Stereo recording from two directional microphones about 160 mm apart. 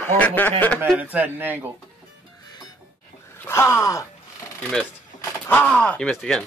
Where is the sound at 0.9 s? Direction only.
10° right (ahead or behind).